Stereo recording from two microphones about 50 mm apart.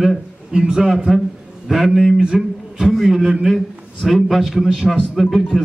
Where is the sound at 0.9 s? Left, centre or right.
Centre.